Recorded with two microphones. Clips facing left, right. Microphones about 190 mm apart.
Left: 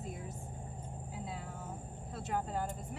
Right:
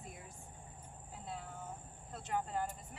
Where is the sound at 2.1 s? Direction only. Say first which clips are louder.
Left 1 dB; 5° left (ahead or behind).